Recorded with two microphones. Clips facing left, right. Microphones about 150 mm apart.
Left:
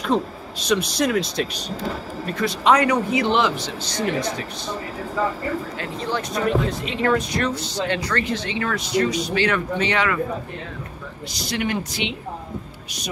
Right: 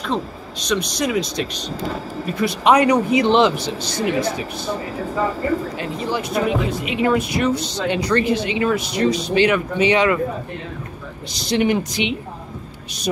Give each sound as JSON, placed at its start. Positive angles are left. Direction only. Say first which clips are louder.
{"t": 0.7, "sound": "speech", "louder": "left 1 dB", "side_deg": 5}
{"t": 2.2, "sound": "speech", "louder": "right 2 dB", "side_deg": -10}
{"t": 3.5, "sound": "speech", "louder": "right 3 dB", "side_deg": -10}
{"t": 5.8, "sound": "speech", "louder": "right 3 dB", "side_deg": -10}
{"t": 11.3, "sound": "speech", "louder": "right 7 dB", "side_deg": -25}